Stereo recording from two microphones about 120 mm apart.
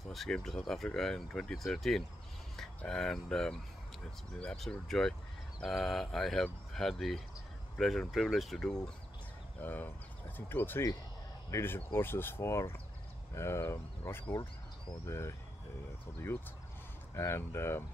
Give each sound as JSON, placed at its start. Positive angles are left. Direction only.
{"t": 0.1, "sound": "speech", "side_deg": 0}
{"t": 9.6, "sound": "speech", "side_deg": 15}